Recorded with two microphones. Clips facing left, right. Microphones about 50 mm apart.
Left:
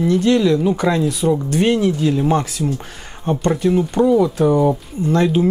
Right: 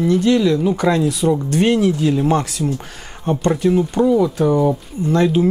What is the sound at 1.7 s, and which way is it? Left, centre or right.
Speech, centre.